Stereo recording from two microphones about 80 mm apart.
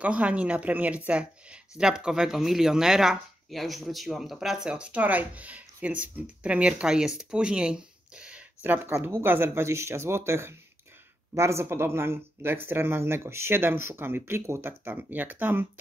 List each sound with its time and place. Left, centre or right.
0.0 s speech: centre
8.6 s speech: right